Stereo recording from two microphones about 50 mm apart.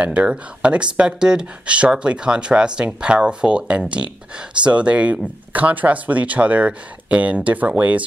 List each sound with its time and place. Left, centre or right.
0.0 s speech: right